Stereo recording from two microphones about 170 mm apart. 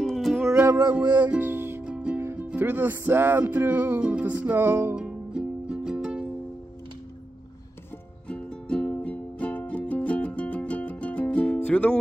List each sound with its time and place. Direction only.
0.0 s music: centre (ahead or behind)
0.6 s music: 20° right (ahead or behind)
0.9 s music: 10° right (ahead or behind)
8.3 s music: 5° left (ahead or behind)